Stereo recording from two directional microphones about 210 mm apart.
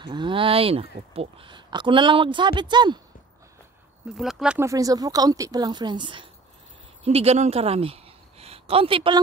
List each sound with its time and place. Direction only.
0.0 s speech: 20° right (ahead or behind)
4.1 s a woman's voice: centre (ahead or behind); by 9.2 s 25° right (ahead or behind)